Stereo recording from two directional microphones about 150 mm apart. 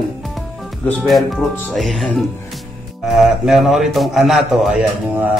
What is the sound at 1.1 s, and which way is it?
Mantra, centre (ahead or behind).